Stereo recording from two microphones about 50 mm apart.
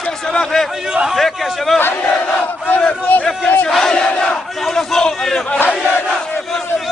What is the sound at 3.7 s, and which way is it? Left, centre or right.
Crowd, centre.